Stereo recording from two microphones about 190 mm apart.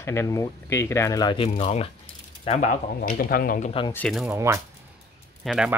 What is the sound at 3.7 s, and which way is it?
Speech, 25° left (ahead or behind).